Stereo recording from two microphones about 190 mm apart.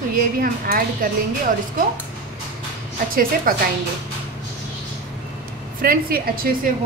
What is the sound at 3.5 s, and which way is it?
Speech, 50° right (ahead or behind).